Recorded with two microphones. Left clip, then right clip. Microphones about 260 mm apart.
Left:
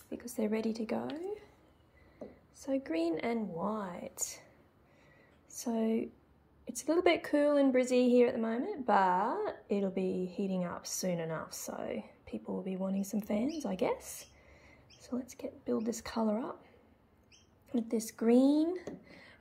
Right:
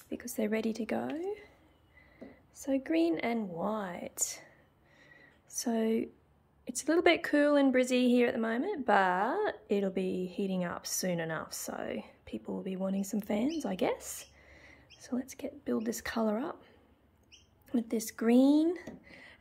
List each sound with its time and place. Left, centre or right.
0.1 s a woman's voice: centre
0.9 s speech: right
2.5 s a woman's voice: right
3.9 s a woman's voice: centre
5.1 s a sound: centre
6.6 s a woman's voice: centre
17.6 s a woman's voice: centre
18.6 s a woman's voice: right